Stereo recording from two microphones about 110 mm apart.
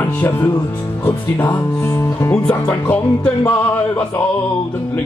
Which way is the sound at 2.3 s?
15° left (ahead or behind).